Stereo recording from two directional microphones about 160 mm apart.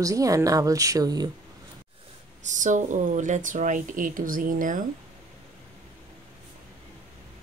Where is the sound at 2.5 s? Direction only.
50° right (ahead or behind).